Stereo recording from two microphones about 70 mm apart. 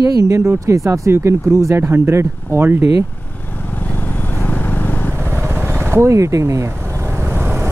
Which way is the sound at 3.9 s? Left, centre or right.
Left.